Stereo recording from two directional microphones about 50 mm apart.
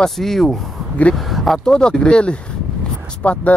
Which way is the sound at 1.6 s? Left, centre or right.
Centre.